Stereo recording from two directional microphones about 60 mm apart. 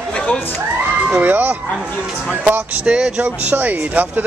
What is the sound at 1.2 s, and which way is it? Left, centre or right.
Speech, right.